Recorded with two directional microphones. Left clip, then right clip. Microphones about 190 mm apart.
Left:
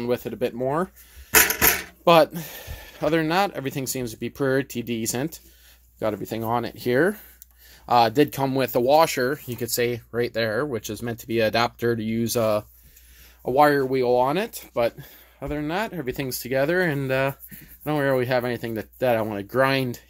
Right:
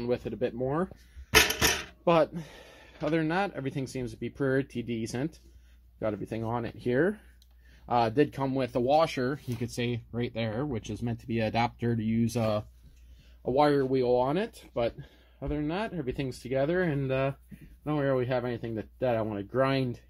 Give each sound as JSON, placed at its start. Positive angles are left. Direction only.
{"t": 0.0, "sound": "speech", "side_deg": 25}
{"t": 1.3, "sound": "a sound", "side_deg": 5}
{"t": 2.0, "sound": "speech", "side_deg": 25}
{"t": 8.2, "sound": "speech", "side_deg": 30}
{"t": 10.4, "sound": "speech", "side_deg": 45}
{"t": 13.4, "sound": "speech", "side_deg": 15}